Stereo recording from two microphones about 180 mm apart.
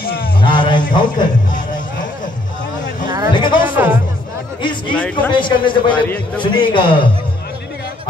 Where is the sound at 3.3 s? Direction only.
25° left (ahead or behind).